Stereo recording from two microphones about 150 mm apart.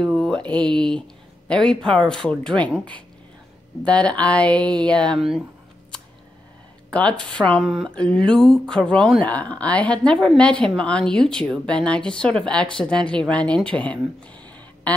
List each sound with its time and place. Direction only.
0.0 s speech: 5° left (ahead or behind)
6.9 s speech: 10° left (ahead or behind)
14.8 s a sound: 10° left (ahead or behind)